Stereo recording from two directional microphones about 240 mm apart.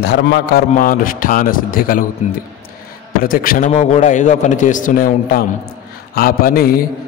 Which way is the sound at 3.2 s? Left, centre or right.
Left.